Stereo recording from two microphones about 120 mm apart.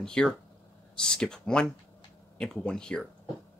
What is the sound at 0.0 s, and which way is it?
Speech, 5° left (ahead or behind).